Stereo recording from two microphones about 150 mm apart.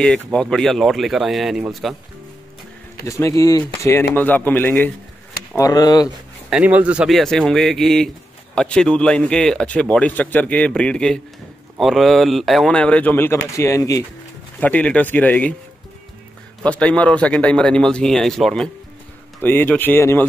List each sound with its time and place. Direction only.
0.0 s a man's voice: 5° left (ahead or behind)
3.1 s speech: 20° left (ahead or behind)
5.6 s speech: 25° left (ahead or behind)
6.5 s a man's voice: 10° right (ahead or behind); by 14.0 s 20° left (ahead or behind)
14.6 s speech: 10° left (ahead or behind)
16.6 s a man's voice: 10° left (ahead or behind)
19.4 s speech: 10° left (ahead or behind)